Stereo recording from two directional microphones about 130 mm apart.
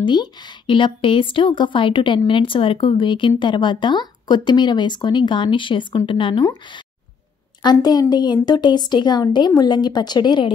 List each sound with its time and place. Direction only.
0.0 s a woman's voice: 35° left (ahead or behind)